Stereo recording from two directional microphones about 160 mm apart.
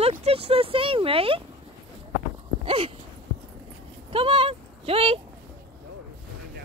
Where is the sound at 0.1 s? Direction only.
40° right (ahead or behind).